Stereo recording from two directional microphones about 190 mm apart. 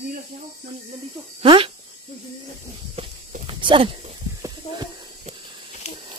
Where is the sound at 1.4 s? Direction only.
25° right (ahead or behind).